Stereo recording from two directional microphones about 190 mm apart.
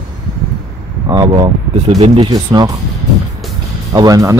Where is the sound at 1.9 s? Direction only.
35° right (ahead or behind).